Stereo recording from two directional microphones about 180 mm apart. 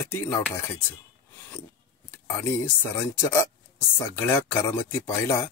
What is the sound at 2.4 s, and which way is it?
Speech, 10° left (ahead or behind).